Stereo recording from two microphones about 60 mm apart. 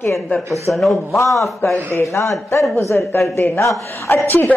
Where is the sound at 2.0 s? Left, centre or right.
Left.